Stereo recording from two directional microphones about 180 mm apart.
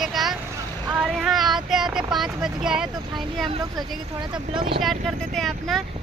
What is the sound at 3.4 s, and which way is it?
Speech, 30° right (ahead or behind).